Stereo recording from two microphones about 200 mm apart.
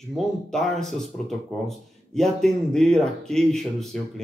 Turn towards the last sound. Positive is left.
turn(degrees=0)  # may be behind; listen again after turning